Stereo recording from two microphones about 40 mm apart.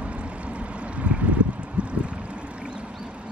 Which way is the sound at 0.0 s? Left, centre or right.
Right.